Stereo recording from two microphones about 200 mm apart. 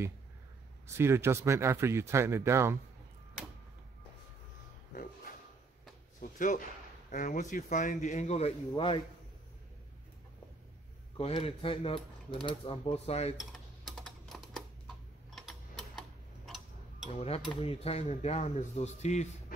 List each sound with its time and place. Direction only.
0.8 s speech: 15° right (ahead or behind)
6.3 s speech: 40° left (ahead or behind)
7.1 s cutlery: 40° left (ahead or behind)
11.1 s speech: 30° left (ahead or behind)
12.4 s cutlery: 25° left (ahead or behind)
13.4 s typing: centre (ahead or behind)
17.1 s cutlery: 30° left (ahead or behind)